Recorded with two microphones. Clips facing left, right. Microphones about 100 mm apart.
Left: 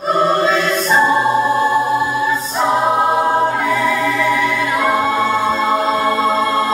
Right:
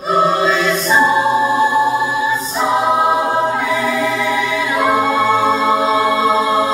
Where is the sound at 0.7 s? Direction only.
Centre (ahead or behind).